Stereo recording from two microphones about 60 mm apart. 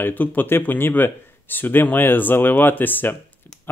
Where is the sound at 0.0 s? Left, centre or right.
Left.